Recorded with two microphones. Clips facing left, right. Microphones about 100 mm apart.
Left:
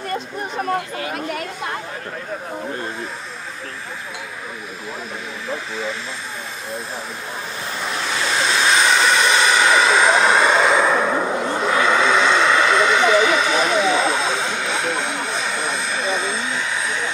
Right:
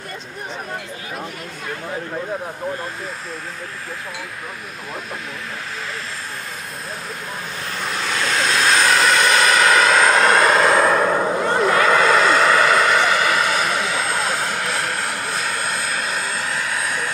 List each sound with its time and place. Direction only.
1.0 s chatter: 70° left (ahead or behind)
7.8 s vehicle: centre (ahead or behind)